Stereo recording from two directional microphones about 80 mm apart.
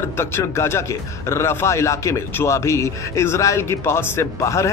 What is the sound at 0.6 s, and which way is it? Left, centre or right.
A man's voice, left.